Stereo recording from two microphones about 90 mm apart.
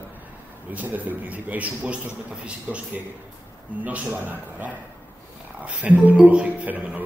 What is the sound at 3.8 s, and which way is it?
A man's voice, 20° right (ahead or behind).